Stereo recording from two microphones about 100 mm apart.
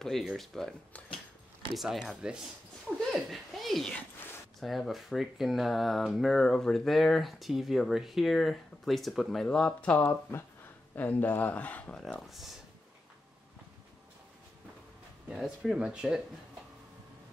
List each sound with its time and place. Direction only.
0.0 s speech: centre (ahead or behind)
1.8 s speech: 5° right (ahead or behind)
15.2 s speech: centre (ahead or behind)